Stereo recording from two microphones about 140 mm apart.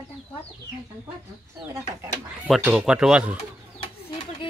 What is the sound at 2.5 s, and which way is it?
Speech, 5° right (ahead or behind).